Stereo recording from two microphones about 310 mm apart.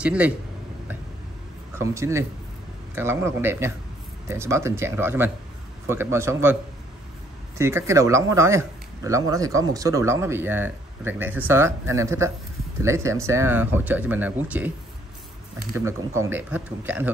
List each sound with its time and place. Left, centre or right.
0.0 s speech: centre
1.8 s speech: centre
7.5 s speech: centre